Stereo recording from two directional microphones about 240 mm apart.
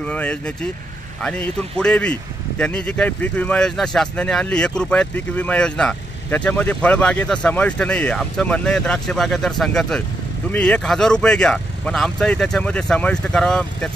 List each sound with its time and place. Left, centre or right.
0.0 s speech: centre